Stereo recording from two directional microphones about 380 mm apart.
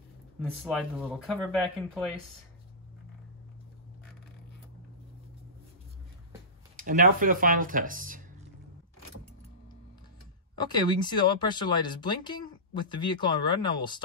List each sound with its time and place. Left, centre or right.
0.4 s speech: centre
6.8 s speech: right
10.6 s speech: centre